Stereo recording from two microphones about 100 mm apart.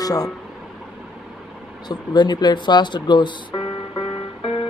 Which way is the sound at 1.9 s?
45° left (ahead or behind).